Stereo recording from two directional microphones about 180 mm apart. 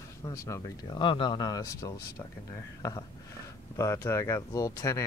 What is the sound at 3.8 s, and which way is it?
Speech, 15° left (ahead or behind).